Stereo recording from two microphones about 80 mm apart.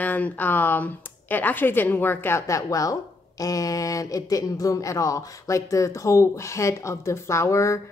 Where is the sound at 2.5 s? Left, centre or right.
Left.